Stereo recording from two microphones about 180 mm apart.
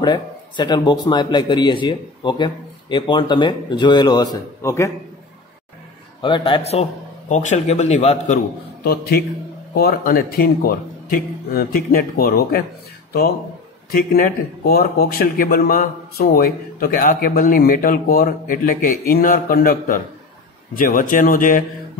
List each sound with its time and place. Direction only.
0.0 s a man's voice: 25° left (ahead or behind)
6.2 s a man's voice: 30° left (ahead or behind)
8.8 s speech: 60° left (ahead or behind)
13.8 s speech: 55° left (ahead or behind)